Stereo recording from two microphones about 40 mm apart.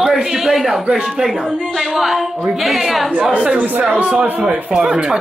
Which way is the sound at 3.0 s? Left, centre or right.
Centre.